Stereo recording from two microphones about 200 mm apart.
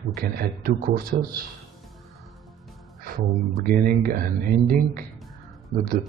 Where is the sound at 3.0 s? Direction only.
45° right (ahead or behind).